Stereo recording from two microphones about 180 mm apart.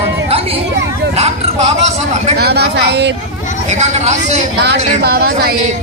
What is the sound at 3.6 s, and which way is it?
Speech, 40° right (ahead or behind).